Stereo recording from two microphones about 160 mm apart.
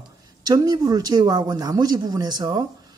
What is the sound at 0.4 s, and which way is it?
A woman's voice, 25° right (ahead or behind).